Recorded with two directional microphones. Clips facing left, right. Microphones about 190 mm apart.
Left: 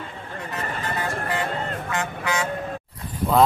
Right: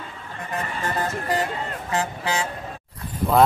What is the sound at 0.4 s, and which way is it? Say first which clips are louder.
Music: right 2 dB; 45° right (ahead or behind).